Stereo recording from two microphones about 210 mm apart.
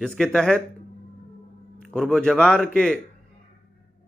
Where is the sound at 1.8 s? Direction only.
Centre (ahead or behind).